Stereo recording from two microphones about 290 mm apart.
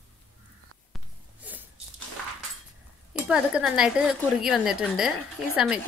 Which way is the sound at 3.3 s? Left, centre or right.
Centre.